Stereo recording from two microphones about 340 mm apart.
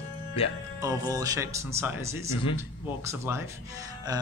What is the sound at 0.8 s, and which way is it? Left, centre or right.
A man's voice, centre.